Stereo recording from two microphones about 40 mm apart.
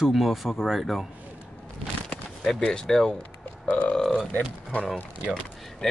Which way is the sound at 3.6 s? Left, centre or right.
Left.